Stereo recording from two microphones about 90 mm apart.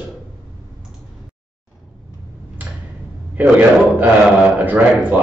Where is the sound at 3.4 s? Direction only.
20° right (ahead or behind).